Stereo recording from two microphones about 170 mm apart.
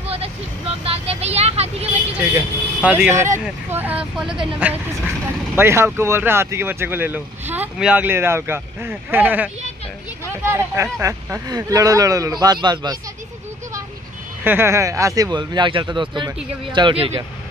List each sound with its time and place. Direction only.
0.1 s speech: 35° right (ahead or behind)
2.1 s speech: 10° right (ahead or behind); by 13.0 s 25° right (ahead or behind)
14.4 s speech: 15° right (ahead or behind); by 17.1 s 30° right (ahead or behind)